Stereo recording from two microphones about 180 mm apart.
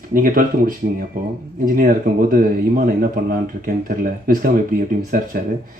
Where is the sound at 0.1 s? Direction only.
50° right (ahead or behind).